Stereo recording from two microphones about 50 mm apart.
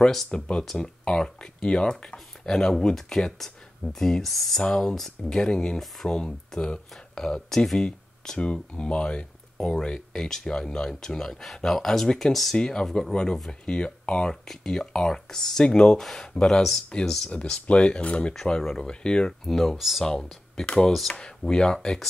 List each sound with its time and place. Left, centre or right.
0.0 s speech: centre
0.3 s speech: centre
12.5 s speech: centre
12.8 s speech: centre
13.1 s speech: centre
14.5 s speech: centre
17.0 s speech: centre
17.6 s speech: left
19.4 s speech: centre
20.6 s speech: centre